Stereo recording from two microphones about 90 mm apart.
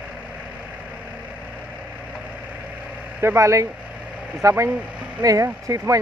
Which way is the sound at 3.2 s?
35° right (ahead or behind).